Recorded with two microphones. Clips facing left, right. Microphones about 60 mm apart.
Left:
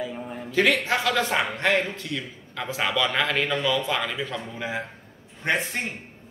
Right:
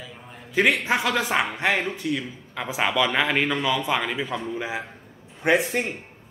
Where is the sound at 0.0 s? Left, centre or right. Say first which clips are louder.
Left 10 dB; centre.